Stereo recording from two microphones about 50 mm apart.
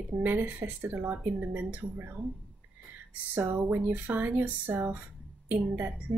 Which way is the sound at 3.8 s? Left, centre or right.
Right.